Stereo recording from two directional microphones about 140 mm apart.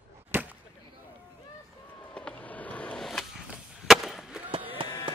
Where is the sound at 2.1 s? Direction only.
10° left (ahead or behind).